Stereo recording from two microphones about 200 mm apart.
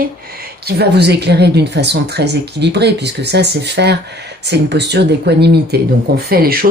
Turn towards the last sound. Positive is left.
turn(degrees=-50)  # may be behind; listen again after turning